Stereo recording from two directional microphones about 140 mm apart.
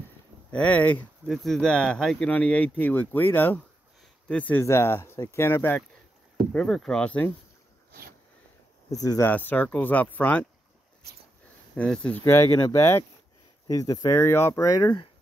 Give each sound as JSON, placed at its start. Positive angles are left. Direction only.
{"t": 0.5, "sound": "speech", "side_deg": 10}
{"t": 1.2, "sound": "speech", "side_deg": 0}
{"t": 8.9, "sound": "speech", "side_deg": 25}
{"t": 9.3, "sound": "speech", "side_deg": 10}
{"t": 11.7, "sound": "speech", "side_deg": 5}
{"t": 12.2, "sound": "speech", "side_deg": 25}